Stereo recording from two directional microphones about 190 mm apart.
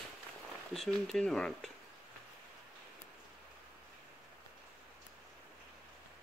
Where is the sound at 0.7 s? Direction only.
Centre (ahead or behind).